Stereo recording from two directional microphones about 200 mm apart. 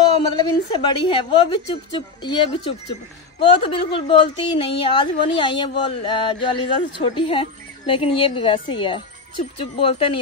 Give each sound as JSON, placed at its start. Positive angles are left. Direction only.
{"t": 0.1, "sound": "a woman's voice", "side_deg": 25}